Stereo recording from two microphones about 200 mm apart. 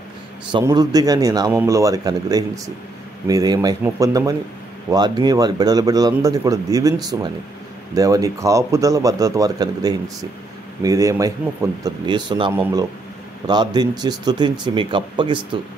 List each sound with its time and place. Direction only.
0.5 s a man's voice: 20° right (ahead or behind)